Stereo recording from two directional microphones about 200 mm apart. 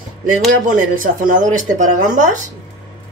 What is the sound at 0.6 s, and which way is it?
Speech, 40° right (ahead or behind).